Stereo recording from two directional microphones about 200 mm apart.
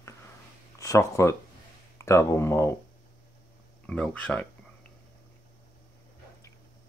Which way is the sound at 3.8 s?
5° left (ahead or behind).